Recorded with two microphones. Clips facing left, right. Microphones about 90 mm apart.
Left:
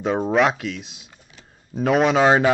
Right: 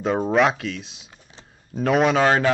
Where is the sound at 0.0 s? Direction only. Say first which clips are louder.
Even; centre (ahead or behind).